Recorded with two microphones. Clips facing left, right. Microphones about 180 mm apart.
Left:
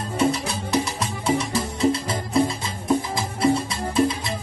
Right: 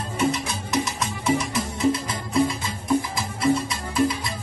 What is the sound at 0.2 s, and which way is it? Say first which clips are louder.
Music: left 2 dB; 35° left (ahead or behind).